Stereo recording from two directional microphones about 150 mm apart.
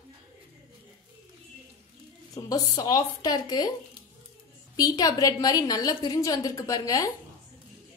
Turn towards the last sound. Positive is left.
turn(degrees=25)  # may be behind; listen again after turning